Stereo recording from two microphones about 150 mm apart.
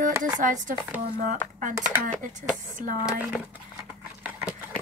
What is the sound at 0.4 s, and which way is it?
Speech, 60° right (ahead or behind).